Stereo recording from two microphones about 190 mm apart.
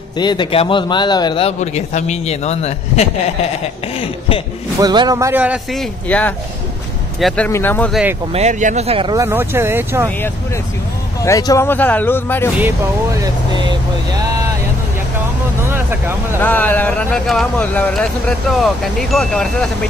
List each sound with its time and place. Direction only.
0.2 s speech: 25° left (ahead or behind)
1.6 s a man's voice: 40° left (ahead or behind)
4.7 s speech: 20° right (ahead or behind)
6.0 s speech: 10° left (ahead or behind)
7.9 s speech: 5° right (ahead or behind)
8.3 s speech: 35° right (ahead or behind)
9.2 s speech: 10° right (ahead or behind)
11.2 s speech: 15° left (ahead or behind)
12.5 s speech: 15° right (ahead or behind)
16.3 s speech: 10° left (ahead or behind)